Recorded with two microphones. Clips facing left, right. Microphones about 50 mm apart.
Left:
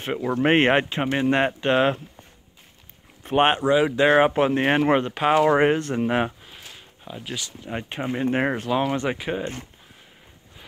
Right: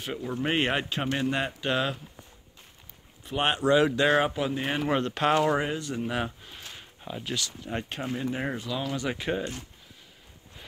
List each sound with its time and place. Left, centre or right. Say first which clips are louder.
0.0 s speech: left 8 dB; left
1.3 s speech: left 8 dB; left
3.3 s speech: left 8 dB; left
3.6 s speech: left 3 dB; centre
4.3 s speech: left 9 dB; left
5.1 s speech: left 5 dB; centre
5.6 s speech: left 10 dB; left
6.4 s a sound: left 1 dB; centre
7.3 s speech: left 2 dB; centre
8.3 s speech: left 8 dB; left